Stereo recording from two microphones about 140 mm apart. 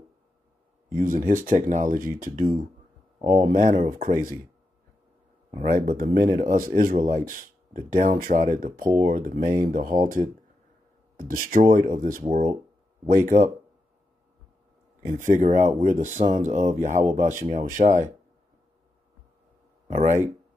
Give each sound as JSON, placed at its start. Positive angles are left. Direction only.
{"t": 0.9, "sound": "speech", "side_deg": -70}
{"t": 3.2, "sound": "speech", "side_deg": -50}
{"t": 5.6, "sound": "speech", "side_deg": -85}
{"t": 11.7, "sound": "speech", "side_deg": -65}
{"t": 15.2, "sound": "speech", "side_deg": -60}
{"t": 19.9, "sound": "speech", "side_deg": -55}